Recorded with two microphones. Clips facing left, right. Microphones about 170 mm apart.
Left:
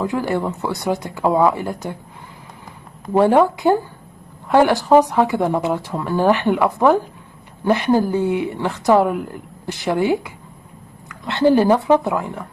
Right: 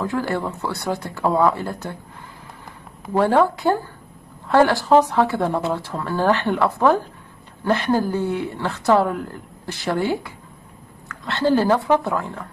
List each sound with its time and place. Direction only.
0.0 s speech: 15° left (ahead or behind)
3.1 s speech: 15° left (ahead or behind)